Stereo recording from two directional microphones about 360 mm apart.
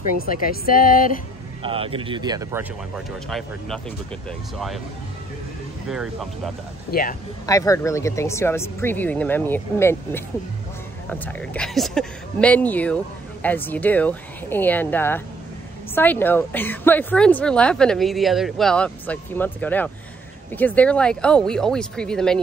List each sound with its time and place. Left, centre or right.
0.2 s speech: left
1.6 s speech: centre
3.3 s a woman's voice: centre
5.9 s a woman's voice: centre
6.9 s speech: left
7.4 s a woman's voice: centre